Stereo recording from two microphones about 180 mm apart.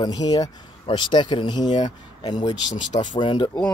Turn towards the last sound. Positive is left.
turn(degrees=25)  # may be behind; listen again after turning